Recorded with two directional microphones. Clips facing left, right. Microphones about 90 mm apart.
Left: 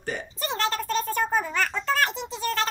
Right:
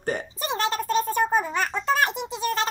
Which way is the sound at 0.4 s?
15° right (ahead or behind).